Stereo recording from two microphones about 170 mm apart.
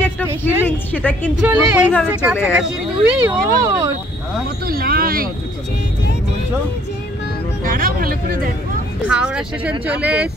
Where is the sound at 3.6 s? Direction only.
20° right (ahead or behind).